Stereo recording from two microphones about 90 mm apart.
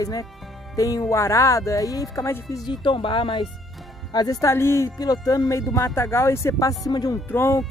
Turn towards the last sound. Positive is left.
turn(degrees=25)  # may be behind; listen again after turning